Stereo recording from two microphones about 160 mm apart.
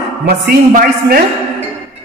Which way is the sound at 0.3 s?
70° right (ahead or behind).